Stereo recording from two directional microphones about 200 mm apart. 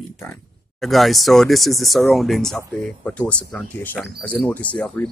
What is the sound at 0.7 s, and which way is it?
Speech, centre (ahead or behind).